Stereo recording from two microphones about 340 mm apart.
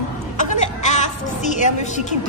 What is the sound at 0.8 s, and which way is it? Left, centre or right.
A woman's voice, left.